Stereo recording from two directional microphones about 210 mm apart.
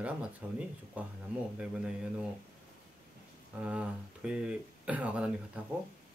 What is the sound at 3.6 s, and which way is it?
Speech, 5° right (ahead or behind).